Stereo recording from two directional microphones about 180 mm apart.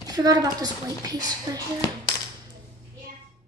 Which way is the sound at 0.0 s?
20° right (ahead or behind).